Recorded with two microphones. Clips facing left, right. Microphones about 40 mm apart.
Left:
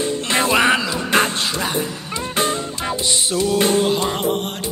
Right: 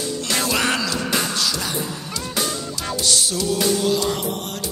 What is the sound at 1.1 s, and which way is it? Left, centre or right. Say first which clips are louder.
Music: left 5 dB; left.